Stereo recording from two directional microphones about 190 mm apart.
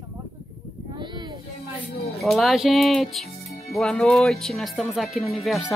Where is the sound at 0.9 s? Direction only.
20° right (ahead or behind).